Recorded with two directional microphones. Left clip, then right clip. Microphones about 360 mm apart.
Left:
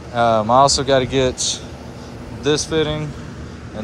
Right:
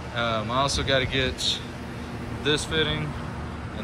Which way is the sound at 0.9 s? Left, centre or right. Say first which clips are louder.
Left 8 dB; centre.